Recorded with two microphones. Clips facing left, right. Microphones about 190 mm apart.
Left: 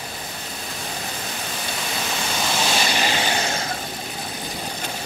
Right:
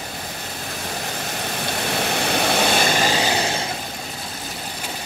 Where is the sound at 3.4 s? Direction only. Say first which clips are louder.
Right 2 dB; 30° right (ahead or behind).